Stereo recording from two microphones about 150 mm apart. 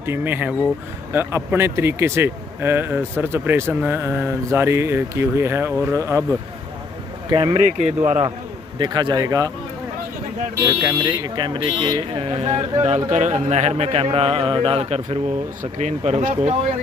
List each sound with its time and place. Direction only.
0.0 s speech: 15° right (ahead or behind)
7.2 s speech: 30° right (ahead or behind)
8.7 s speech: 30° right (ahead or behind)
10.6 s speech: 20° right (ahead or behind)
11.0 s speech: 30° right (ahead or behind)
13.1 s speech: 50° right (ahead or behind)
15.6 s speech: 50° right (ahead or behind)